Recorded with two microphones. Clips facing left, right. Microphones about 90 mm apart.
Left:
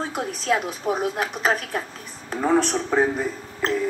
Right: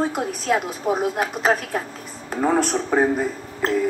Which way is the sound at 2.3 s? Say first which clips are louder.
Right 1 dB; 10° right (ahead or behind).